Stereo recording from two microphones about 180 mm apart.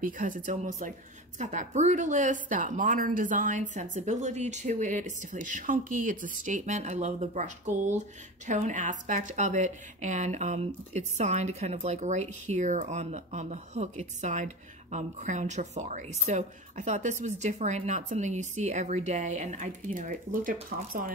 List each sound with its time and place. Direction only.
0.0 s a woman's voice: 50° right (ahead or behind)